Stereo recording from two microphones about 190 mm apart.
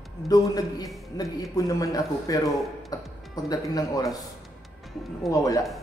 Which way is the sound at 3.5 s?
20° left (ahead or behind).